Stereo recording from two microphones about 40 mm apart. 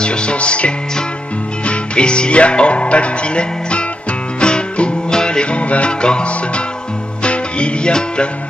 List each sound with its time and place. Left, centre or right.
0.0 s music: left